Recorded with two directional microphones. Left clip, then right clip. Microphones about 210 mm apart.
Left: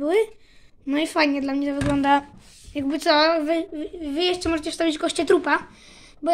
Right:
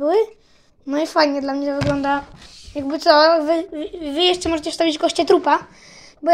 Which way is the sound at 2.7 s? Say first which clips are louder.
Right 5 dB; 55° left (ahead or behind).